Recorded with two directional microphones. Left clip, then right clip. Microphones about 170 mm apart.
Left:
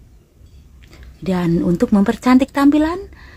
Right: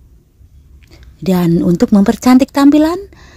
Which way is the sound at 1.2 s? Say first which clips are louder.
Right 5 dB; 40° right (ahead or behind).